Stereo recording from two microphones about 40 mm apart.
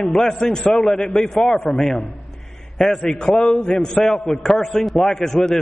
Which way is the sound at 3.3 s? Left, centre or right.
Centre.